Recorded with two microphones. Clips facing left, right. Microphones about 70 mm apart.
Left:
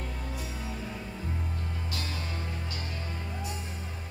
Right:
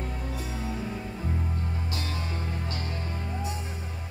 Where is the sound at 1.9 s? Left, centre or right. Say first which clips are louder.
Right 3 dB; right.